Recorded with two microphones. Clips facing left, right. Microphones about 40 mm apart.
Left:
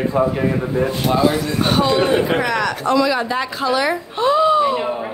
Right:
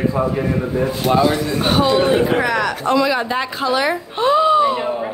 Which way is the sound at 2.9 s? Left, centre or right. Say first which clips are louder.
Even; right.